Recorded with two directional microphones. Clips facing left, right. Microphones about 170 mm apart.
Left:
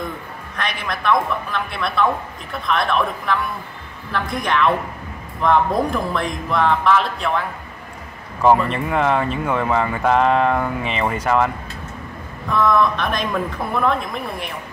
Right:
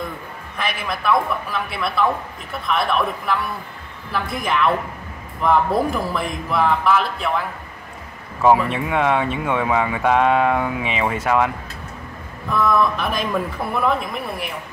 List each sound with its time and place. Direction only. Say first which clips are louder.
0.6 s speech: even; 5° right (ahead or behind)